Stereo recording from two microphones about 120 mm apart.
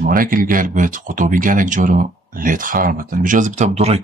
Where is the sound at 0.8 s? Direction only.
90° right.